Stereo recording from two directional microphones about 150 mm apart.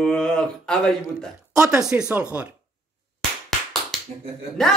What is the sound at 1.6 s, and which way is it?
Speech, 5° right (ahead or behind).